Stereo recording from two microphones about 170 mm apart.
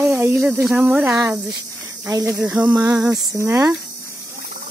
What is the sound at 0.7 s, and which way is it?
Speech, centre (ahead or behind).